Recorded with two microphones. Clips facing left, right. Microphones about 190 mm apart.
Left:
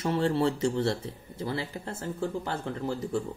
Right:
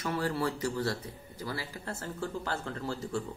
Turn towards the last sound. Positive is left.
turn(degrees=20)  # may be behind; listen again after turning